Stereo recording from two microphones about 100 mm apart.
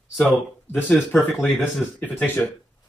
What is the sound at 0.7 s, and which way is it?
Speech, 20° left (ahead or behind).